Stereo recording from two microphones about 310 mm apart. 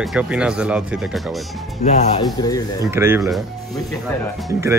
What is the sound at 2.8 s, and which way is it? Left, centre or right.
Speech, centre.